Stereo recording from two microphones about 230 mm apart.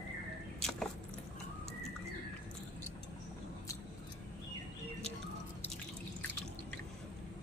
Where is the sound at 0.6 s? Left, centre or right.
Centre.